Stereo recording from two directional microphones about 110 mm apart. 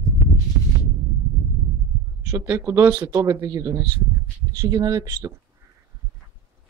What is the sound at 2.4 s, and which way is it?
Speech, 20° right (ahead or behind).